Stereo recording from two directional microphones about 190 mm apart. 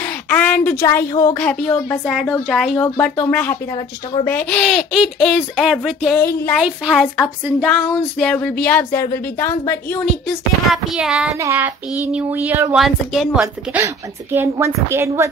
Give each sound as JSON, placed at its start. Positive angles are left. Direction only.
{"t": 0.0, "sound": "speech", "side_deg": 10}
{"t": 3.7, "sound": "speech", "side_deg": 25}
{"t": 4.3, "sound": "speech", "side_deg": 5}
{"t": 10.2, "sound": "a woman's voice", "side_deg": 0}
{"t": 12.7, "sound": "speech", "side_deg": 0}
{"t": 13.4, "sound": "a woman's voice", "side_deg": -15}